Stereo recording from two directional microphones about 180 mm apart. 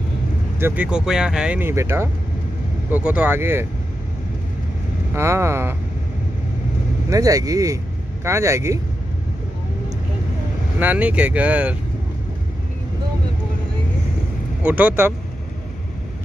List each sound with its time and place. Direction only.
0.6 s speech: 10° right (ahead or behind)
5.1 s speech: 15° right (ahead or behind)
7.1 s speech: 20° right (ahead or behind)
10.8 s speech: 10° right (ahead or behind)
14.6 s speech: 10° right (ahead or behind)